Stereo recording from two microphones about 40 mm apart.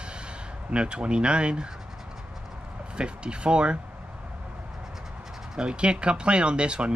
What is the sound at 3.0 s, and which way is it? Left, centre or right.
Speech, right.